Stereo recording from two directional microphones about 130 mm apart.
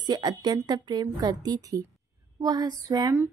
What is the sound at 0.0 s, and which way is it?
Speech, 35° right (ahead or behind).